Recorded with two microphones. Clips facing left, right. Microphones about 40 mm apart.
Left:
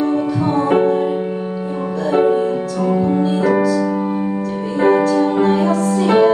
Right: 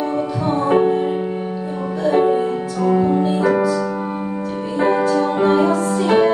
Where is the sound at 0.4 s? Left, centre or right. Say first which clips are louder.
Even; left.